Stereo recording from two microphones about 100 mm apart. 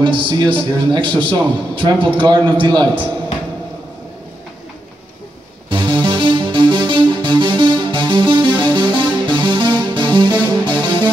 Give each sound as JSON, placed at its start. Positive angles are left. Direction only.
{"t": 0.0, "sound": "a man's voice", "side_deg": -50}
{"t": 5.7, "sound": "music", "side_deg": -50}